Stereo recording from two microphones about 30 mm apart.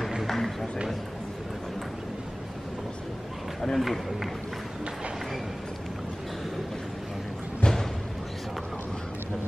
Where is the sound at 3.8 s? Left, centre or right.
Centre.